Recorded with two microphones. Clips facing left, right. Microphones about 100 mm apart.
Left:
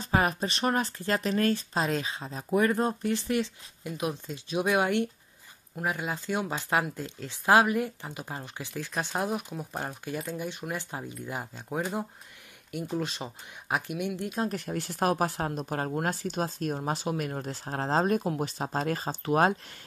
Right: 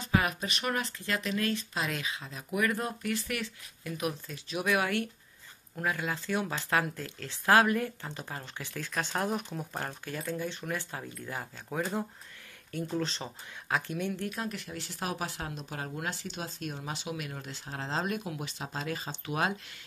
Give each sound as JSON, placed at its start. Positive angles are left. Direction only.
{"t": 0.0, "sound": "speech", "side_deg": 35}
{"t": 14.4, "sound": "speech", "side_deg": 45}